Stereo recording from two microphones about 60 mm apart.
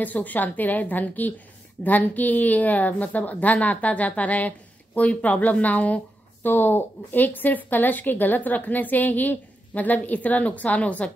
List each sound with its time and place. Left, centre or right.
0.0 s a woman's voice: left
6.4 s a woman's voice: left